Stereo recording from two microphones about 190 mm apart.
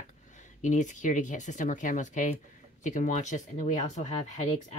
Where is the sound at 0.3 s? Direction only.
40° left (ahead or behind).